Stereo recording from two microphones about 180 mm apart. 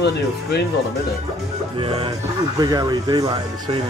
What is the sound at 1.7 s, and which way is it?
Speech, 30° right (ahead or behind).